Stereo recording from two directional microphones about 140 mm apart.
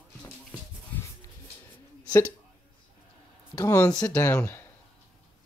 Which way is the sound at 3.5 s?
25° left (ahead or behind).